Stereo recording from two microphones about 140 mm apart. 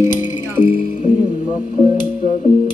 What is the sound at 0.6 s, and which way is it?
Music, 10° left (ahead or behind).